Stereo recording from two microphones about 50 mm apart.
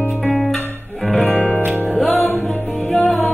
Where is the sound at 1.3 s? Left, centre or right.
Left.